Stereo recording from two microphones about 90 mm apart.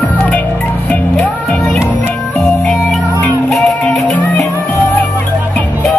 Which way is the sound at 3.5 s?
5° left (ahead or behind).